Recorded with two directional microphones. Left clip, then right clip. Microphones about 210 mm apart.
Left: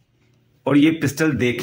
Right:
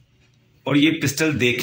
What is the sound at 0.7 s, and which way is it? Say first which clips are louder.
Speech: left 2 dB; 30° left (ahead or behind).